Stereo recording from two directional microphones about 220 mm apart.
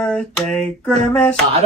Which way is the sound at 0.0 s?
5° left (ahead or behind).